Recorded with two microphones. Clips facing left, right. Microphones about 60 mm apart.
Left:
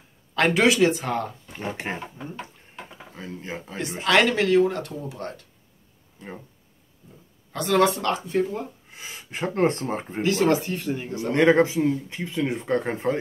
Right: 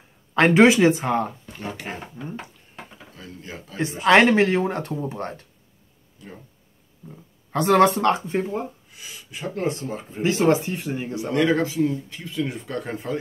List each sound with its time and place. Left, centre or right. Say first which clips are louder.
0.3 s speech: right 5 dB; right
1.6 s speech: left 2 dB; left
3.2 s speech: left 4 dB; left
4.0 s speech: right 5 dB; right
6.2 s speech: left 3 dB; left
7.5 s speech: right 4 dB; right
8.9 s speech: left 3 dB; left
10.2 s speech: right 2 dB; right
11.3 s speech: left 3 dB; left